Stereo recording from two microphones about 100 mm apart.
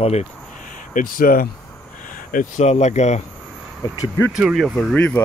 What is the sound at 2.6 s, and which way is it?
Speech, 90° left.